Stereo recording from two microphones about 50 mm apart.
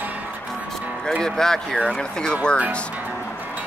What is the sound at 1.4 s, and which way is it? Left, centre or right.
Speech, centre.